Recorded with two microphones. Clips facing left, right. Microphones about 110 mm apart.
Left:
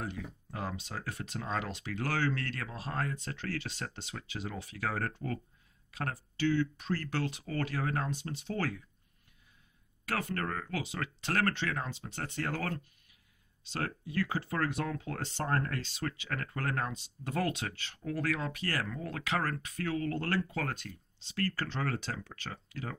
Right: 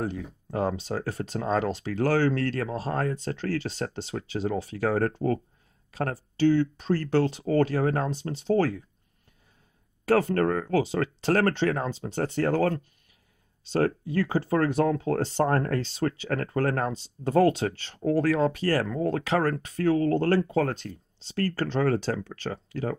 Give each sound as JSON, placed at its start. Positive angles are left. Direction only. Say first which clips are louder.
{"t": 0.0, "sound": "speech", "louder": "right 8 dB", "side_deg": -35}
{"t": 10.0, "sound": "speech", "louder": "right 13 dB", "side_deg": -35}